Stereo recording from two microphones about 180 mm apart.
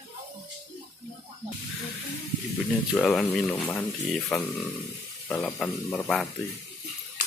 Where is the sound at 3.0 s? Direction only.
5° left (ahead or behind).